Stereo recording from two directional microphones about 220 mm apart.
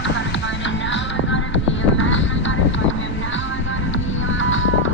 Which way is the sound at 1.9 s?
60° left (ahead or behind).